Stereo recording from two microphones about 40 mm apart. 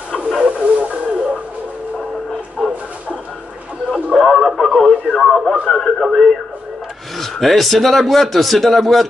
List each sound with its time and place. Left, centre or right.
0.5 s radio: right
2.6 s a sound: centre
4.1 s radio: centre
7.2 s speech: centre